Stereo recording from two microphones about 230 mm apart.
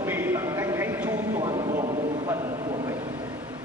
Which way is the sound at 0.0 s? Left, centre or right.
Centre.